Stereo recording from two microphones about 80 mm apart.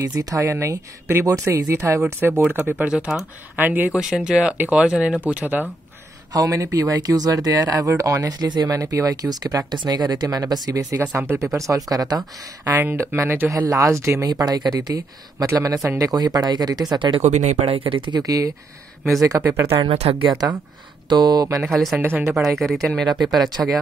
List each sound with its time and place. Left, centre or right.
0.0 s speech: right
3.9 s speech: centre
6.3 s speech: right
9.7 s speech: right
11.1 s speech: right
12.7 s speech: right
13.5 s speech: right
14.3 s speech: right
17.7 s speech: right
18.2 s speech: right
19.8 s speech: right
21.6 s speech: centre